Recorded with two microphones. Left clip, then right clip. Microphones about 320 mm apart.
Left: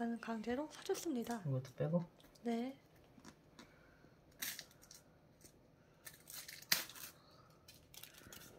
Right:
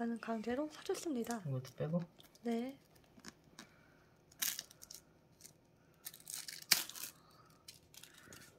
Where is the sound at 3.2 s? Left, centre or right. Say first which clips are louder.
Right 5 dB; centre.